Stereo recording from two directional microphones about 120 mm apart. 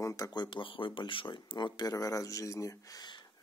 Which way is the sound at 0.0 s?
30° left (ahead or behind).